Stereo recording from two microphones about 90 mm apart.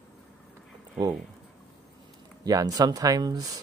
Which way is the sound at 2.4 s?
45° right (ahead or behind).